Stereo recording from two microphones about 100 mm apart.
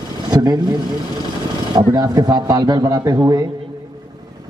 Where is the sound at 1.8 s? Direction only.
40° right (ahead or behind).